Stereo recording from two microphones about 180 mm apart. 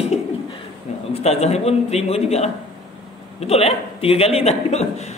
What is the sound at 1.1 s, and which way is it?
A man's voice, 35° left (ahead or behind).